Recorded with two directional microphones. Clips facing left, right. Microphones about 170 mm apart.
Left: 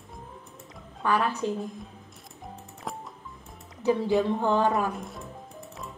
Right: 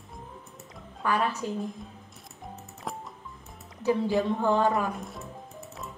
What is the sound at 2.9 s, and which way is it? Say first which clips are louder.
Music: even; centre (ahead or behind).